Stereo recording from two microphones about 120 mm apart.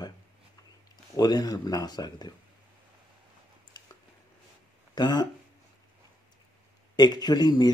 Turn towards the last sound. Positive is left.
turn(degrees=35)  # may be behind; listen again after turning